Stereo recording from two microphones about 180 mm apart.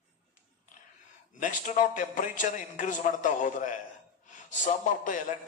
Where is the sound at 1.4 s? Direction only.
45° left (ahead or behind).